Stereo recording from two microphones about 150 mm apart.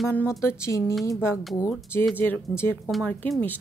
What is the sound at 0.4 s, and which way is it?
Speech, 20° left (ahead or behind).